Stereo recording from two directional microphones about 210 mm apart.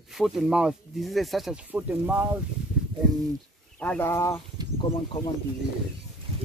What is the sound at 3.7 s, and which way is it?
Speech, 10° left (ahead or behind).